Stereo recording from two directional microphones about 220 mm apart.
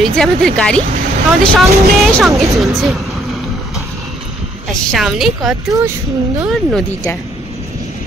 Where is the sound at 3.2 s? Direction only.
Centre (ahead or behind).